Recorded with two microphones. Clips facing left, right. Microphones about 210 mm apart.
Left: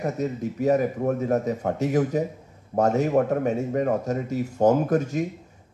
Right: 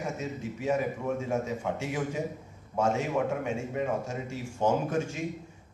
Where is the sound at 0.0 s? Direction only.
40° left (ahead or behind).